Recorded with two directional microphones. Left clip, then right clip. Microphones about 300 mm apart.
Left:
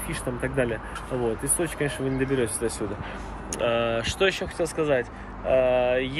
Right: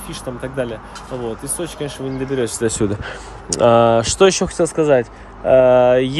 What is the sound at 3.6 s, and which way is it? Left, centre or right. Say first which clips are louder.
Speech: right 13 dB; right.